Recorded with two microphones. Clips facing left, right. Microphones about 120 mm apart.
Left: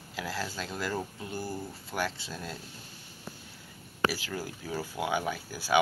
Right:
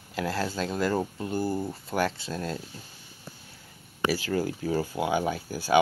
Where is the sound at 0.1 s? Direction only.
50° right (ahead or behind).